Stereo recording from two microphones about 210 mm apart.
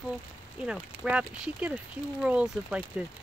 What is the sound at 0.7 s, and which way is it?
Speech, 5° right (ahead or behind).